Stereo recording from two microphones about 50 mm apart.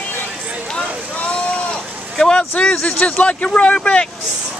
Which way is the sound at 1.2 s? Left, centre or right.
Left.